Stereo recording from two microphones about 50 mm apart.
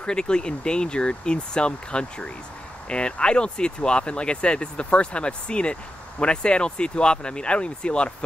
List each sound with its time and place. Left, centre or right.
0.0 s speech: centre